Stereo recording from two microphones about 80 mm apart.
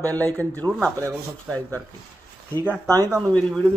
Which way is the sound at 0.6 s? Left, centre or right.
Right.